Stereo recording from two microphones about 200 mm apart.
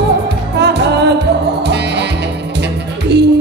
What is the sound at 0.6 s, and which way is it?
Music, 55° right (ahead or behind).